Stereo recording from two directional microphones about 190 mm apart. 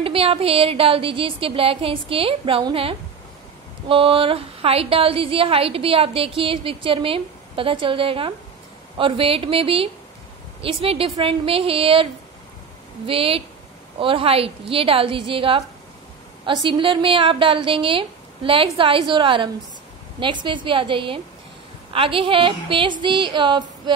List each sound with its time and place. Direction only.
0.0 s a woman's voice: 30° right (ahead or behind)